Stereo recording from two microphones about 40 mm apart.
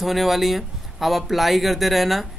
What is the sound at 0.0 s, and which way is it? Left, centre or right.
Speech, centre.